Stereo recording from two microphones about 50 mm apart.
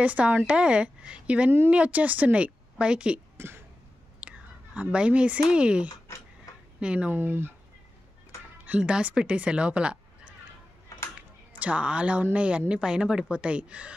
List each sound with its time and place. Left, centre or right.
0.0 s a woman's voice: right
3.3 s throat clearing: right
4.2 s whispering: right
5.5 s a woman's voice: centre
7.1 s speech: right
8.6 s music: right
9.0 s speech: right
11.6 s a woman's voice: right